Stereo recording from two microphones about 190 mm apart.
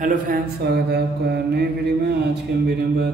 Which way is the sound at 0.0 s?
55° right (ahead or behind).